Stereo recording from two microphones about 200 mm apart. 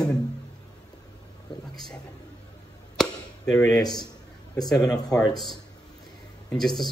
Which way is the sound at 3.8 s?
20° left (ahead or behind).